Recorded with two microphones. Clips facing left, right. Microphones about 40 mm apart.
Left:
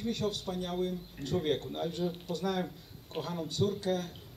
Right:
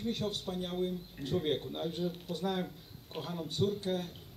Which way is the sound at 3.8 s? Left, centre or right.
Left.